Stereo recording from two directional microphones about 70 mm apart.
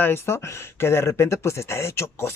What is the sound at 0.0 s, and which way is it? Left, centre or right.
Speech, left.